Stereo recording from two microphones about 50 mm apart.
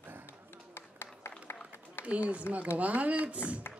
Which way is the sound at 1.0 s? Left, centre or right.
Left.